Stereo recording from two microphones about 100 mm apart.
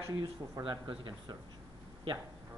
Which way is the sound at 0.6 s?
55° right (ahead or behind).